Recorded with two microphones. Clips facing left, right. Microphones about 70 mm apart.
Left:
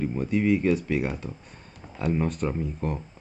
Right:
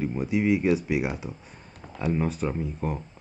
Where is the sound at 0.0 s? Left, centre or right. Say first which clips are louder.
Even; centre.